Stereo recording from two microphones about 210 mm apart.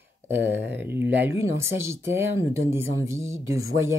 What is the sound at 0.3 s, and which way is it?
Speech, 10° right (ahead or behind).